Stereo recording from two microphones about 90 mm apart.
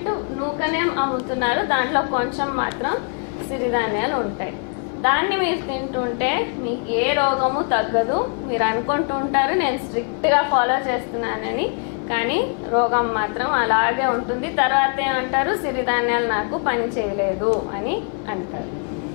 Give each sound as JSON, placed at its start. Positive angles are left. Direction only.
{"t": 0.0, "sound": "a woman's voice", "side_deg": 15}